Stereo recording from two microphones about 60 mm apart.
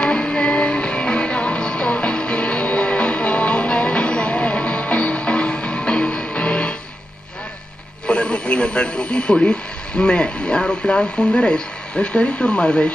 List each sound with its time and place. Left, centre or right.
0.0 s music: centre
8.1 s speech: centre